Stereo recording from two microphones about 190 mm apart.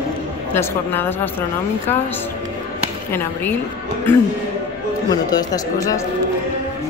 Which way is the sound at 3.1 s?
10° left (ahead or behind).